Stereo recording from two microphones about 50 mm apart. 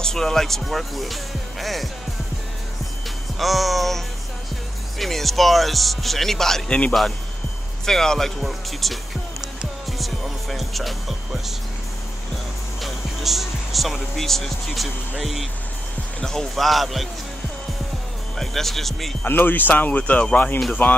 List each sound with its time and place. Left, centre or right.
0.0 s speech: centre
3.3 s speech: centre
9.8 s music: centre
12.8 s speech: centre
16.2 s speech: centre
18.4 s speech: centre
19.2 s speech: left
20.8 s speech: left